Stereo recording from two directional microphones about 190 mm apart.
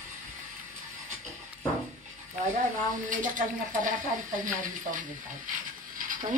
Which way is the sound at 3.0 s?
45° right (ahead or behind).